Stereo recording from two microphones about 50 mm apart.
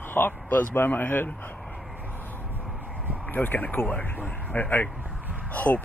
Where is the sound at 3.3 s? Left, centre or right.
Left.